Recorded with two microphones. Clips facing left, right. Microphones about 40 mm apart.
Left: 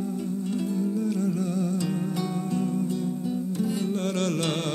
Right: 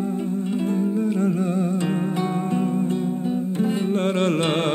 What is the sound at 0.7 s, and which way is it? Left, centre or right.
Music, right.